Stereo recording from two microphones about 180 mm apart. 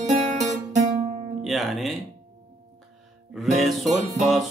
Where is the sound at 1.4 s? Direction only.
Centre (ahead or behind).